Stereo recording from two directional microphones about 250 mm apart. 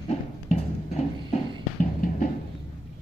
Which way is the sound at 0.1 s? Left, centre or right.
Left.